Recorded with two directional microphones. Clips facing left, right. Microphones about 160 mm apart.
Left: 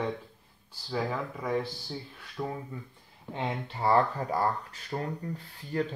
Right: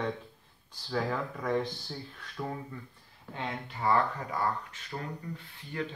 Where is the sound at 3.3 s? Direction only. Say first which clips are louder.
Left 4 dB; 30° left (ahead or behind).